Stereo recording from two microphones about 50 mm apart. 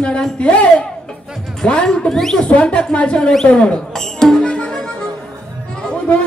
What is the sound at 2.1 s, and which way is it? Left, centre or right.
Speech, centre.